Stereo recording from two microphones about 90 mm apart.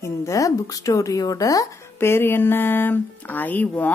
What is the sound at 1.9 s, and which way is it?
Speech, 25° left (ahead or behind).